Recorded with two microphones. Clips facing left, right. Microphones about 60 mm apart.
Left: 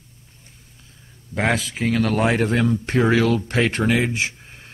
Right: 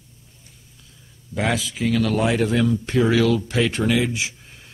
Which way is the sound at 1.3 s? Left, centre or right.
Left.